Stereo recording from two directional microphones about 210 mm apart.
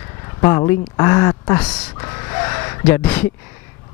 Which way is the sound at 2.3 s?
15° left (ahead or behind).